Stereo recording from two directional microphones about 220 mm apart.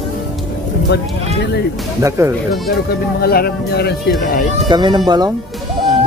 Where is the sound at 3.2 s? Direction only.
45° left (ahead or behind).